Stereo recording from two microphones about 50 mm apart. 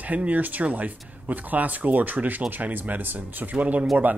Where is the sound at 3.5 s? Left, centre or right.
Right.